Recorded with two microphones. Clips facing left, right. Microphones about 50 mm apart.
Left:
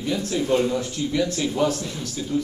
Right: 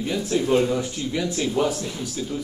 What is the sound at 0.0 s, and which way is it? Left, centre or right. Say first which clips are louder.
Speech: right 1 dB; centre.